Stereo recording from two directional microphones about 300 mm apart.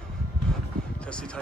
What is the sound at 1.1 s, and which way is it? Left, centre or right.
Speech, centre.